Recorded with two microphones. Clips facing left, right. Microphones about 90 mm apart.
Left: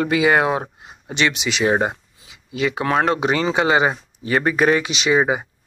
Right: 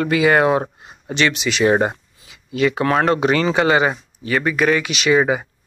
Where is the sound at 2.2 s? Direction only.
15° left (ahead or behind).